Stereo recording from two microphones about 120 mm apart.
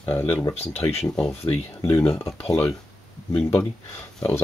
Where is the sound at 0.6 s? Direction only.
60° left (ahead or behind).